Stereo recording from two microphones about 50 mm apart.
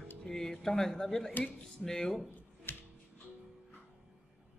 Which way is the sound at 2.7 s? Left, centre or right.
Left.